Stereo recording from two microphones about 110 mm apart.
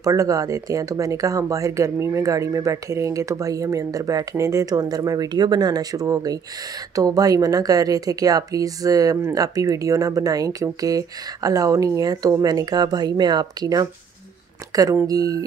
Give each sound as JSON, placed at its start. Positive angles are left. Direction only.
{"t": 0.0, "sound": "speech", "side_deg": -30}
{"t": 15.0, "sound": "speech", "side_deg": -35}